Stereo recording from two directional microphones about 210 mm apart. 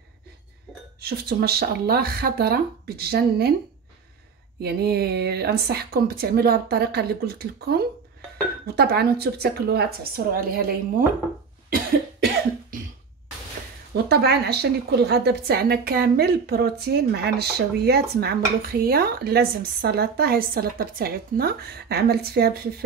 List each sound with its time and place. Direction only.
1.0 s a woman's voice: 50° right (ahead or behind)
4.6 s a woman's voice: 50° right (ahead or behind)
14.0 s a woman's voice: 50° right (ahead or behind)